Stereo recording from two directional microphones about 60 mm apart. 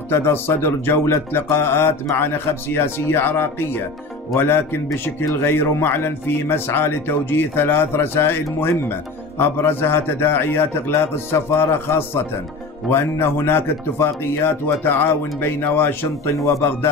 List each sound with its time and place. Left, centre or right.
0.1 s speech: left